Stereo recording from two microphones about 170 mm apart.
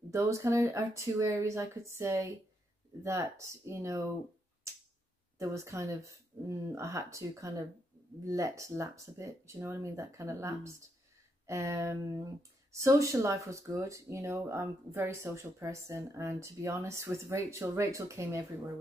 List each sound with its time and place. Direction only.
0.1 s speech: 15° right (ahead or behind)
5.4 s speech: 15° right (ahead or behind)